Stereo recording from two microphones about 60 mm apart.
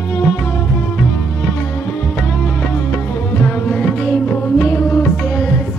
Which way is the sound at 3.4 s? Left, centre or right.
Centre.